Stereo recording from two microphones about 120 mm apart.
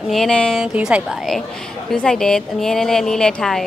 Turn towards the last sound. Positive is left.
turn(degrees=5)  # may be behind; listen again after turning